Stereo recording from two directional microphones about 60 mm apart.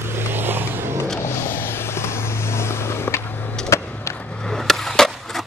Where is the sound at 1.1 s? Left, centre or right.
Left.